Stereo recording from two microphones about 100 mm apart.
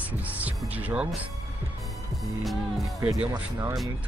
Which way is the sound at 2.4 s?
Centre (ahead or behind).